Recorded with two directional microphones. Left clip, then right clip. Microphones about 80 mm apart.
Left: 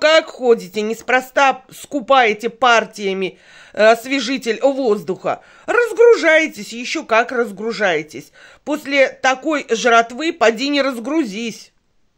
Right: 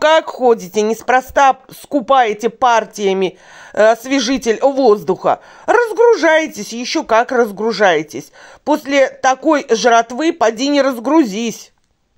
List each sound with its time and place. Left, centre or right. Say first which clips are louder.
0.0 s speech: right 2 dB; right
0.8 s speech: right 3 dB; right
7.1 s speech: right 3 dB; right
8.6 s speech: right 3 dB; right
10.9 s speech: right 7 dB; right